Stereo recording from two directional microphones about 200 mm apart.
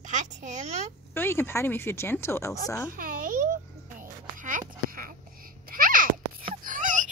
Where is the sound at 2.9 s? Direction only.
45° right (ahead or behind).